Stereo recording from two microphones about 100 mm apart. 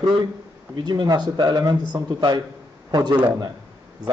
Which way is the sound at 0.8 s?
45° right (ahead or behind).